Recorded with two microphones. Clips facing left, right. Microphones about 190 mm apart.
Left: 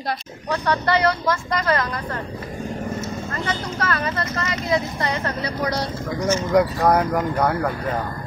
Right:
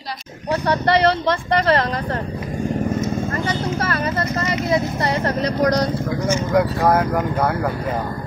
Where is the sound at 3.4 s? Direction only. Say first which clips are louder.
Right 4 dB; 30° right (ahead or behind).